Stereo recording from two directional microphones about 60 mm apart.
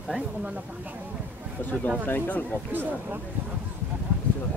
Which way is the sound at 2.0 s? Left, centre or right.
Left.